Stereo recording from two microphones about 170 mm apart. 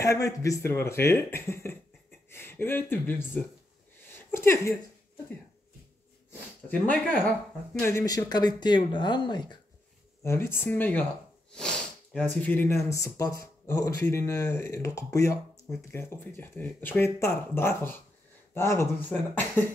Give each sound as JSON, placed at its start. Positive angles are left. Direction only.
{"t": 0.0, "sound": "speech", "side_deg": 20}
{"t": 4.3, "sound": "speech", "side_deg": 15}
{"t": 6.7, "sound": "speech", "side_deg": 10}
{"t": 10.2, "sound": "speech", "side_deg": 15}